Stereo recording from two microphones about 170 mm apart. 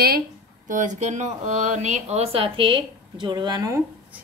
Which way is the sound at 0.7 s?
45° right (ahead or behind).